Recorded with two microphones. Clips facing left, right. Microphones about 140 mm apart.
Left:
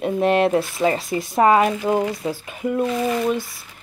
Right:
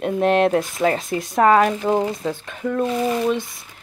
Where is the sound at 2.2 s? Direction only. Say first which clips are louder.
Even; 10° left (ahead or behind).